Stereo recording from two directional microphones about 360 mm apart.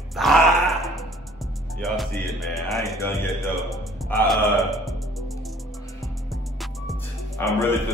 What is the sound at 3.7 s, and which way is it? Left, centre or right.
Music, centre.